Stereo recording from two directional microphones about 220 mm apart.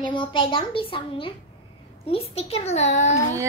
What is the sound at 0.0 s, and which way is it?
A child's voice, 20° left (ahead or behind).